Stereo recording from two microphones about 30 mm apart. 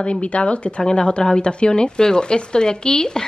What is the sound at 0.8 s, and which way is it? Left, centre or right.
Speech, left.